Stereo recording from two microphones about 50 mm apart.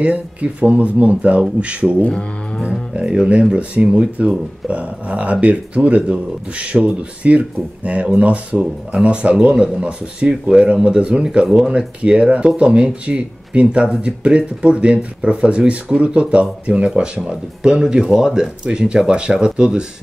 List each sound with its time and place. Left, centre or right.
0.0 s speech: right
2.0 s speech: left
2.9 s speech: centre
11.4 s speech: centre
12.0 s speech: right